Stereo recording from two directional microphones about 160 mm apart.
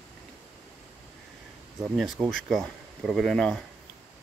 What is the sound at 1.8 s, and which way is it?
Speech, centre (ahead or behind).